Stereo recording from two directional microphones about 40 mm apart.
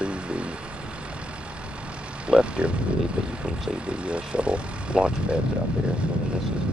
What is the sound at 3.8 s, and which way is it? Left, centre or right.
Speech, right.